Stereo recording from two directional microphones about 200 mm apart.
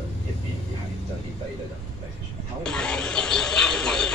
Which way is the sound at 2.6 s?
5° left (ahead or behind).